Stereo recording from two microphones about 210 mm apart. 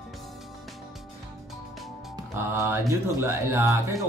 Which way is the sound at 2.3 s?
10° right (ahead or behind).